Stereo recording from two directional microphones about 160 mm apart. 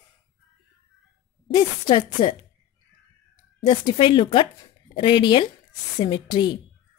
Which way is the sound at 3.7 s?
30° left (ahead or behind).